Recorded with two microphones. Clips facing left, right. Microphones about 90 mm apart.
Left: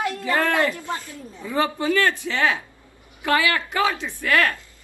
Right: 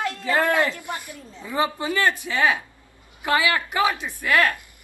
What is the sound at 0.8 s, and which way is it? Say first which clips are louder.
Snake: left 2 dB; 15° right (ahead or behind).